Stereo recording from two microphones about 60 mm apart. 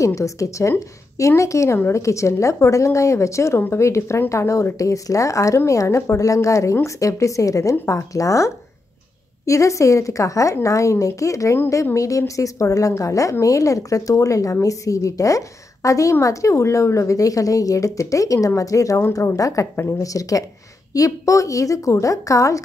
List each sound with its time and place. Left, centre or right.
0.0 s a woman's voice: left